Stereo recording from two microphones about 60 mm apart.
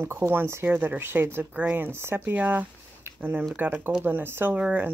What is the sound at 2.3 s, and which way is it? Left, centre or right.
Speech, right.